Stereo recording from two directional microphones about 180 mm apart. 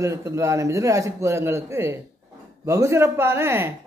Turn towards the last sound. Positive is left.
turn(degrees=-15)  # may be behind; listen again after turning